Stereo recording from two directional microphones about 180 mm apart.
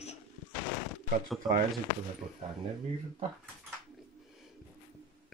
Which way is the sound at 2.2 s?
35° right (ahead or behind).